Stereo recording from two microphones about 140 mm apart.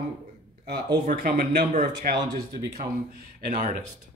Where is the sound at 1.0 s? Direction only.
90° right.